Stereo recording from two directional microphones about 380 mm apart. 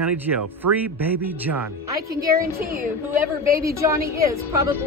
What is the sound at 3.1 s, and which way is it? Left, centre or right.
A woman's voice, centre.